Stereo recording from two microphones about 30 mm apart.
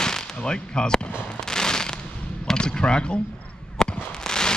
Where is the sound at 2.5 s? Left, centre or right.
Left.